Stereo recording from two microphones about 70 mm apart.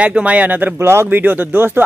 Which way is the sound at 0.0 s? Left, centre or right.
Centre.